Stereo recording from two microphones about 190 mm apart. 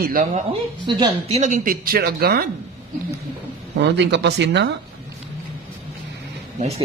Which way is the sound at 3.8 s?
70° right (ahead or behind).